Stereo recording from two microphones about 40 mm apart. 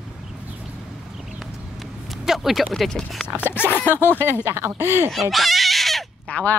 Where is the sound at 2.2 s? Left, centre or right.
Centre.